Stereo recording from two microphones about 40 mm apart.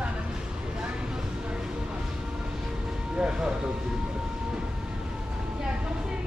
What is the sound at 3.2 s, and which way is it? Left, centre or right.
Vehicle, centre.